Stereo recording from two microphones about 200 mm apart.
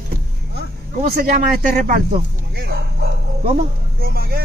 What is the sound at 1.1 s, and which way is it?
Speech, 45° right (ahead or behind).